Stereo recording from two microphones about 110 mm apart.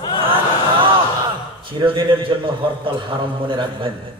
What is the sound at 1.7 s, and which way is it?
A man's voice, 50° right (ahead or behind).